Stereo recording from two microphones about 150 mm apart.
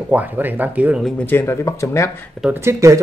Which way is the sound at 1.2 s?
15° left (ahead or behind).